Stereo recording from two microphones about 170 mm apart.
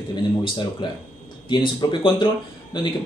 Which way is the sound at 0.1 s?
25° left (ahead or behind).